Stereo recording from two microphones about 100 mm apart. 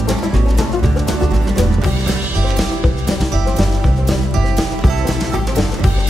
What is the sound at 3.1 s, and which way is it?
Music, centre (ahead or behind).